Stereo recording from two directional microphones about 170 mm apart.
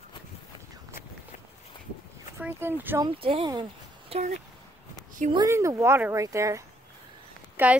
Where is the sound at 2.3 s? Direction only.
10° right (ahead or behind).